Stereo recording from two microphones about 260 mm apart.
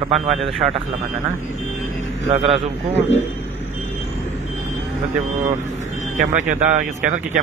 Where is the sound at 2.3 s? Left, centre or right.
Right.